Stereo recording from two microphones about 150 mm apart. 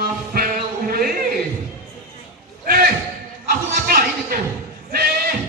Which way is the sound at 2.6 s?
75° right (ahead or behind).